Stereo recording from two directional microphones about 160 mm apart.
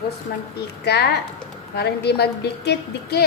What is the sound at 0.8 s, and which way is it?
A woman's voice, 90° left.